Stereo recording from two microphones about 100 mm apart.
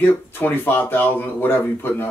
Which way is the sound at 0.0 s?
20° left (ahead or behind).